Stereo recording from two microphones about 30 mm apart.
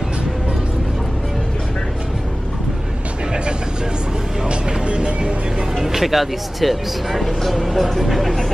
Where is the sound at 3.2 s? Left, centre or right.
Right.